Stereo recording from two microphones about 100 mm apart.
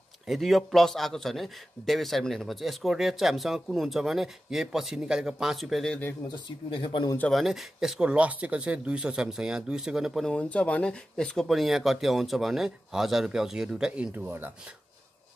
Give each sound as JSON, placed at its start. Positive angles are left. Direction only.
{"t": 0.3, "sound": "a man's voice", "side_deg": 0}
{"t": 6.2, "sound": "speech", "side_deg": 55}
{"t": 7.2, "sound": "speech", "side_deg": 0}
{"t": 10.2, "sound": "a man's voice", "side_deg": 10}
{"t": 14.1, "sound": "speech", "side_deg": -20}